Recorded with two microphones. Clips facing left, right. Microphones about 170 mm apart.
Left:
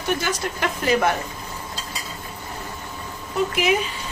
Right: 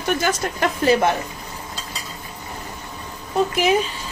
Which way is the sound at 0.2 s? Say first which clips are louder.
Right 4 dB; 40° right (ahead or behind).